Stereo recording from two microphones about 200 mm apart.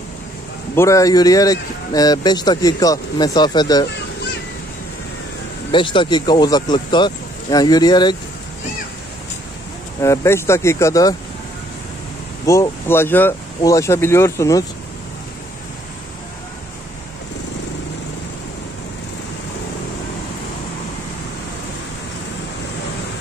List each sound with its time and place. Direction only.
0.7 s a man's voice: 15° left (ahead or behind)
5.7 s a man's voice: 25° left (ahead or behind)
10.0 s speech: 15° left (ahead or behind)
12.4 s speech: 15° left (ahead or behind)